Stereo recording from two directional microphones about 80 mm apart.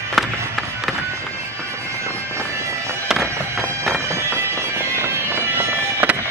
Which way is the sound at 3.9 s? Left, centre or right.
Right.